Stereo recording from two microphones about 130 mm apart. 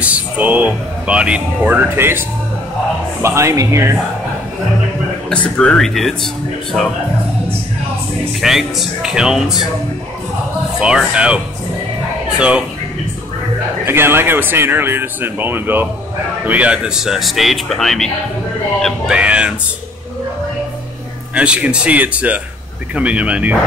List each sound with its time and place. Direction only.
0.0 s speech: 10° right (ahead or behind)
5.3 s speech: 10° left (ahead or behind)
8.4 s speech: centre (ahead or behind)
10.8 s speech: 5° right (ahead or behind)
13.8 s speech: 15° right (ahead or behind); by 18.1 s 5° left (ahead or behind)
19.0 s speech: 10° right (ahead or behind)
21.4 s speech: 10° right (ahead or behind)